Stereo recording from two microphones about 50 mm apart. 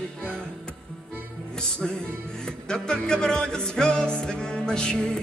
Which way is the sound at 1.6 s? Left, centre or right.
Centre.